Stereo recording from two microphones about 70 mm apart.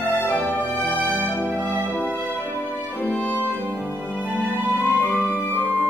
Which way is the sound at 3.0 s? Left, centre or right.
Left.